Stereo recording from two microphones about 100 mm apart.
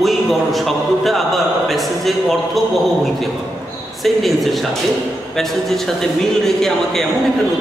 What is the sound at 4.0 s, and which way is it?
A man's voice, centre (ahead or behind).